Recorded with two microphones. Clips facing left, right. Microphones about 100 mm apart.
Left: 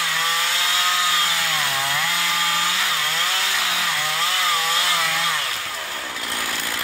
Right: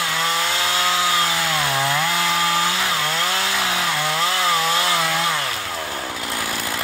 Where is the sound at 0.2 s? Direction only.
30° right (ahead or behind).